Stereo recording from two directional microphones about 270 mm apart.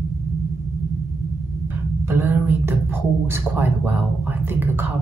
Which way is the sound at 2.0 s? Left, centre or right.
Centre.